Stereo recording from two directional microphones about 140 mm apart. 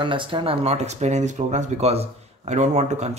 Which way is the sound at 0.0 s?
35° right (ahead or behind).